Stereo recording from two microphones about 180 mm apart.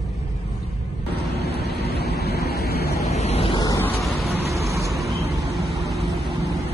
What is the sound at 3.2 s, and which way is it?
Waves, 35° left (ahead or behind).